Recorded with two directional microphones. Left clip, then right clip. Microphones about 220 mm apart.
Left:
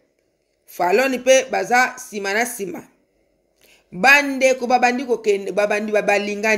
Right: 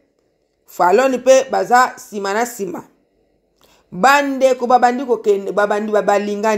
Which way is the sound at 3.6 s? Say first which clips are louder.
Right 4 dB; 15° right (ahead or behind).